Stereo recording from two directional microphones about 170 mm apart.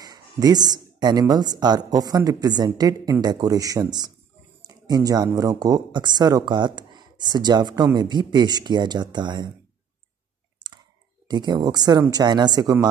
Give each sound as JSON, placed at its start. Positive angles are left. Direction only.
{"t": 0.0, "sound": "speech", "side_deg": -25}
{"t": 11.2, "sound": "speech", "side_deg": -25}